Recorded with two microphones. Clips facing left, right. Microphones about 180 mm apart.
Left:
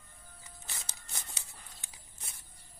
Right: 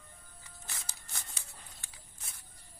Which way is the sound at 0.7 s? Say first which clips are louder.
Even; 20° left (ahead or behind).